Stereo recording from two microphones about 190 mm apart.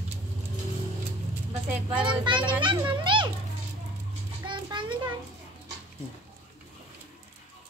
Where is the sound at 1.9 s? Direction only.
25° right (ahead or behind).